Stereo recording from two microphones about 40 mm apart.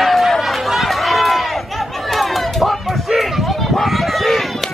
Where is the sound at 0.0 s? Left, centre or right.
Centre.